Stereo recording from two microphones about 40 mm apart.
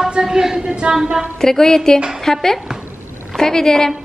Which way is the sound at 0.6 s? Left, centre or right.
Right.